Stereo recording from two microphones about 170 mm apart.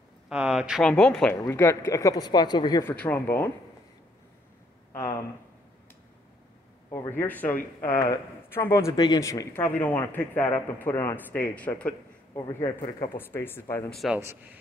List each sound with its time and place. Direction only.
0.3 s speech: 5° right (ahead or behind)
1.3 s speech: 15° left (ahead or behind)
2.8 s speech: 10° left (ahead or behind)
6.9 s speech: 15° left (ahead or behind)
12.4 s speech: 20° left (ahead or behind)
13.8 s speech: centre (ahead or behind)